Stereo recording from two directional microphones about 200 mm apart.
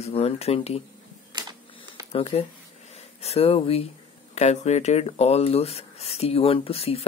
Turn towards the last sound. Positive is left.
turn(degrees=30)  # may be behind; listen again after turning